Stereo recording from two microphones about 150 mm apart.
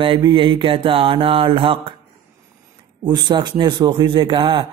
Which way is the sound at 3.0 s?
30° right (ahead or behind).